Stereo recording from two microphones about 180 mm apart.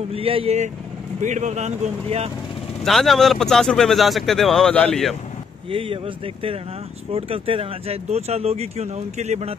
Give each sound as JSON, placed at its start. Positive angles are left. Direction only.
{"t": 0.1, "sound": "speech", "side_deg": -30}
{"t": 2.8, "sound": "speech", "side_deg": 0}
{"t": 5.7, "sound": "speech", "side_deg": -30}